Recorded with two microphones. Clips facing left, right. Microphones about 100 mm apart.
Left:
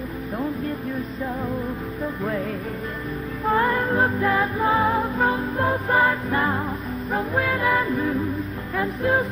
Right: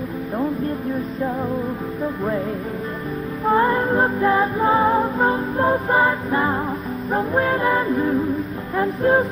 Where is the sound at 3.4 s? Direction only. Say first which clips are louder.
Right 3 dB; 25° right (ahead or behind).